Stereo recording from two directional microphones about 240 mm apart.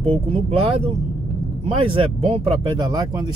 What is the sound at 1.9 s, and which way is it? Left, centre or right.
Speech, right.